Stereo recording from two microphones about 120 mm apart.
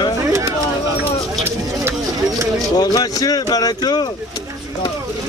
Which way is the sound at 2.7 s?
30° left (ahead or behind).